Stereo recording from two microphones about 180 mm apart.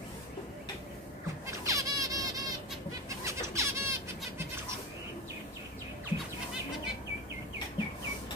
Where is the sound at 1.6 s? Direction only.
20° right (ahead or behind).